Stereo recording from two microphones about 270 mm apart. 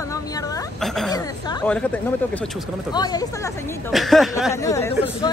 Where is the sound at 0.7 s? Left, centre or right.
Centre.